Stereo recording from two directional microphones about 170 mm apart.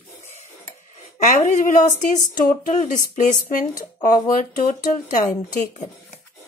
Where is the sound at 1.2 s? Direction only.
45° left (ahead or behind).